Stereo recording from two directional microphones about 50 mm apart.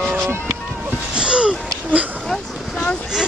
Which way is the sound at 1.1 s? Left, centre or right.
Centre.